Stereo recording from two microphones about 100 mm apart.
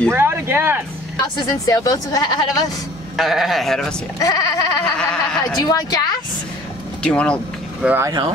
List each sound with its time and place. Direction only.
0.1 s speech: 25° right (ahead or behind)
1.4 s a woman's voice: 40° left (ahead or behind)
3.2 s speech: centre (ahead or behind)
4.2 s a woman's voice: 40° left (ahead or behind)
4.9 s speech: 10° left (ahead or behind)
5.6 s a woman's voice: 40° left (ahead or behind)
7.0 s speech: 10° left (ahead or behind)
7.8 s speech: 10° right (ahead or behind)